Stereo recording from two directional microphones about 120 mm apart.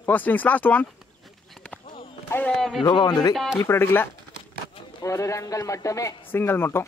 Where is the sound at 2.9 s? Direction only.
35° left (ahead or behind).